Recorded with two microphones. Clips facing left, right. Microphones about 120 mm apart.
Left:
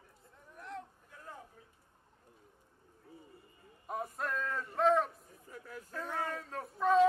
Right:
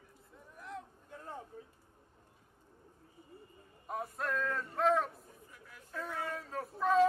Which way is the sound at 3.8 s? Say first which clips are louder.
Even; centre (ahead or behind).